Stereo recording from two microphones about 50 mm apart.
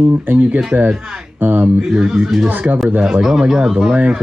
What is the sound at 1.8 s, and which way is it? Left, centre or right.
Speech, centre.